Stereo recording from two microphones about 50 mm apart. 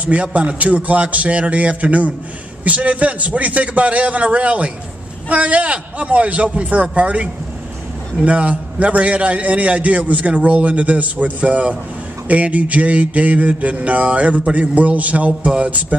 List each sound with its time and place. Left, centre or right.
0.0 s a man's voice: right